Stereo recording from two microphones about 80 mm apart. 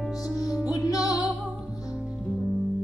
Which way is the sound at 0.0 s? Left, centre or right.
Centre.